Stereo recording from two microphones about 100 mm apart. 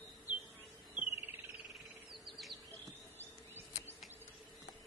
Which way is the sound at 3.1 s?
20° right (ahead or behind).